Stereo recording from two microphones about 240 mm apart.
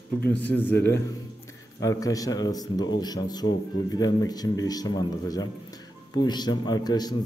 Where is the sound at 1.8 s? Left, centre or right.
Centre.